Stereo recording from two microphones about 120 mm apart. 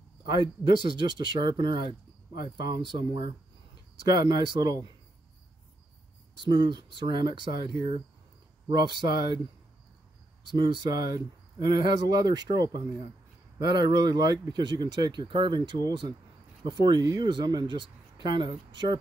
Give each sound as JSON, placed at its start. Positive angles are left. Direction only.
{"t": 0.2, "sound": "speech", "side_deg": -35}
{"t": 4.1, "sound": "speech", "side_deg": -35}
{"t": 6.3, "sound": "speech", "side_deg": -40}
{"t": 10.5, "sound": "speech", "side_deg": -40}
{"t": 16.6, "sound": "speech", "side_deg": -40}